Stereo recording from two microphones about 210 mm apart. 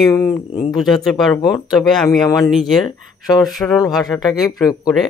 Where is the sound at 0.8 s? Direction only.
Centre (ahead or behind).